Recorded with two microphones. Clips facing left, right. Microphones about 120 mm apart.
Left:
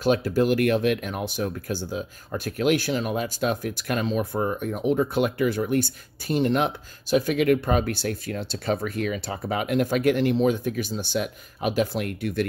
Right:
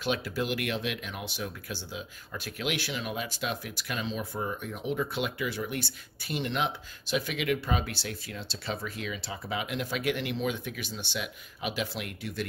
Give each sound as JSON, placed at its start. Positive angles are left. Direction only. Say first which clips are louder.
{"t": 0.0, "sound": "speech", "louder": "left 10 dB", "side_deg": 40}